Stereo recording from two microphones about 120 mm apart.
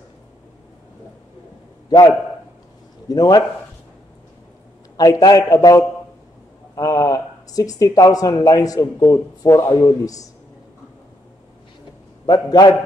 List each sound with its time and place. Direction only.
1.9 s a man's voice: 35° left (ahead or behind)
4.9 s a man's voice: 30° left (ahead or behind)
12.3 s a man's voice: 35° left (ahead or behind)